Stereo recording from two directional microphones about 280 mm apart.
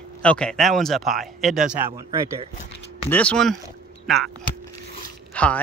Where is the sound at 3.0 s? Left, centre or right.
Centre.